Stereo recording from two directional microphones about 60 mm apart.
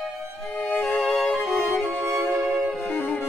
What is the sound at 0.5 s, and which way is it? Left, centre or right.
Music, left.